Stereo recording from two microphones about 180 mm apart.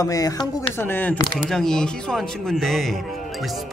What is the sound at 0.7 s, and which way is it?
Speech, 10° left (ahead or behind).